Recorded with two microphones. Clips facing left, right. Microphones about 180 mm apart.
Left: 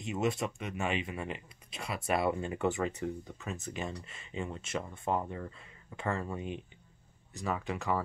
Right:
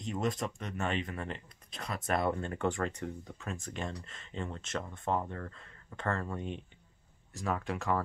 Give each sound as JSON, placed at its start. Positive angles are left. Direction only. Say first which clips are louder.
{"t": 0.0, "sound": "speech", "louder": "left 2 dB", "side_deg": 5}